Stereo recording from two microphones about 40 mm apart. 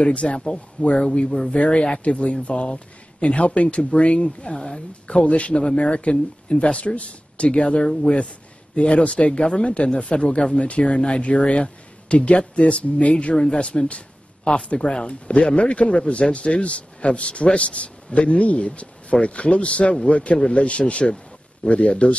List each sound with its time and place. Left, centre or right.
0.0 s speech: left